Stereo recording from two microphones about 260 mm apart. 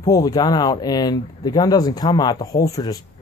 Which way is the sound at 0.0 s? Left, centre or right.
Centre.